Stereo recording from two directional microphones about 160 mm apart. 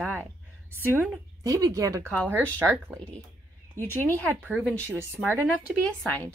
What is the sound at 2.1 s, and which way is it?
Speech, 10° left (ahead or behind).